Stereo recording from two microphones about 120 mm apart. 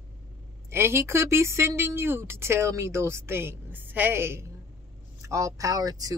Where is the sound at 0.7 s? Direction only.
20° right (ahead or behind).